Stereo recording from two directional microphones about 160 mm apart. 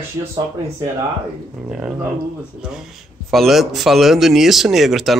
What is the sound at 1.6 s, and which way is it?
A man's voice, 5° right (ahead or behind).